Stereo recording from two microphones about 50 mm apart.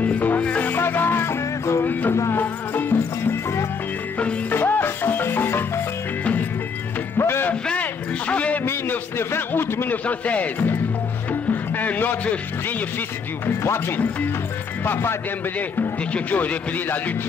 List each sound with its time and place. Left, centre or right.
0.0 s music: left
0.7 s music: left
1.9 s music: left
4.5 s music: left
7.2 s music: left
7.8 s a sound: left
8.8 s a sound: left
10.0 s speech: left
11.7 s a man's voice: left
13.5 s speech: left
16.1 s a man's voice: left